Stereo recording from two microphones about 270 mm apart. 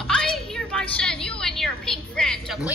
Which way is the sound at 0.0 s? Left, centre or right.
Centre.